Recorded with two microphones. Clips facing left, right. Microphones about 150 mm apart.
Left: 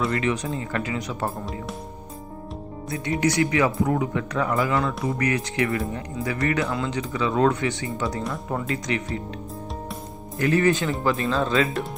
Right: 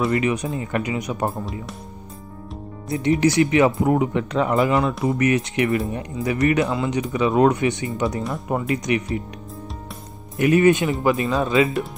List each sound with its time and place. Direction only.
0.1 s speech: 20° right (ahead or behind)
1.3 s speech: centre (ahead or behind)
2.9 s speech: 25° right (ahead or behind)
10.3 s speech: 20° right (ahead or behind)
11.4 s speech: centre (ahead or behind)